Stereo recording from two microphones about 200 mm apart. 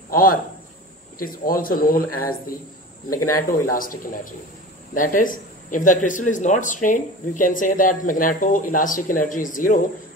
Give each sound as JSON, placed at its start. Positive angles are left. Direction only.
{"t": 0.1, "sound": "a man's voice", "side_deg": 45}